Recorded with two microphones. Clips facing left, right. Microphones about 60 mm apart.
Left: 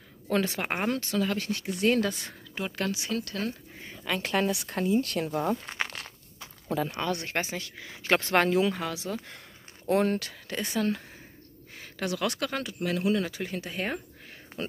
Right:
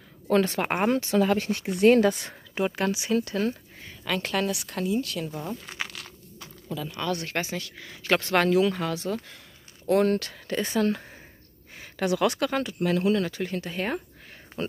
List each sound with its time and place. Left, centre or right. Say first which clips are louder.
0.3 s speech: right 5 dB; centre
0.8 s speech: right 7 dB; right
1.7 s speech: right 7 dB; right
2.5 s speech: right 5 dB; centre
3.8 s speech: right 2 dB; centre
4.5 s speech: left 1 dB; left
5.0 s speech: left 4 dB; left
5.7 s a sound: left 2 dB; left
6.7 s speech: left 4 dB; left
7.0 s speech: right 1 dB; left; by 9.2 s centre
9.8 s speech: right 3 dB; centre
10.6 s speech: right 3 dB; centre